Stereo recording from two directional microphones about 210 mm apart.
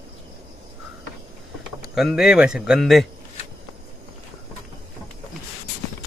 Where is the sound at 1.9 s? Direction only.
Centre (ahead or behind).